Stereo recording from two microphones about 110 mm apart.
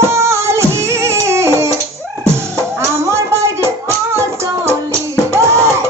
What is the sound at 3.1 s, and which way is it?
Music, 25° right (ahead or behind).